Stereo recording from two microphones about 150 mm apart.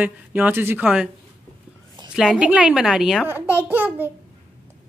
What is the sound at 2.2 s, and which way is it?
Speech, 5° right (ahead or behind).